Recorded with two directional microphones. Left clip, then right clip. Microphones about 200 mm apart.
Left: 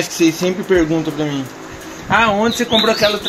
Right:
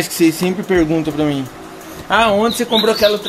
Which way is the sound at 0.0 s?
35° right (ahead or behind).